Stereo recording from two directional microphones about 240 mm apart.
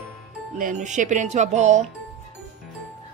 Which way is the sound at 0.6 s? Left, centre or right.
Right.